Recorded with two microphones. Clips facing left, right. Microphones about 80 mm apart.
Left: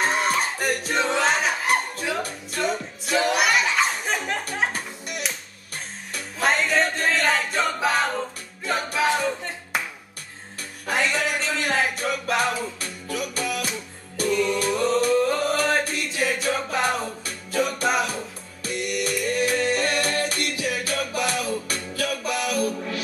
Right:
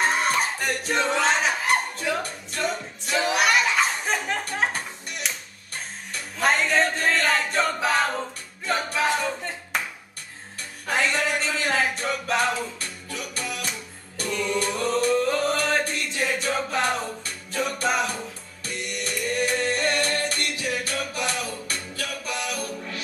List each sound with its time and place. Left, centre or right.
0.0 s music: centre
10.9 s music: centre